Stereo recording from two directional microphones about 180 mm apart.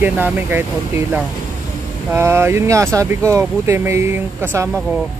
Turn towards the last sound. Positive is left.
turn(degrees=-15)  # may be behind; listen again after turning